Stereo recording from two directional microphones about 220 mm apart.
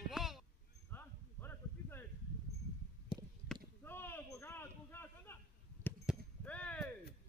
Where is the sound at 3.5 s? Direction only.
10° left (ahead or behind).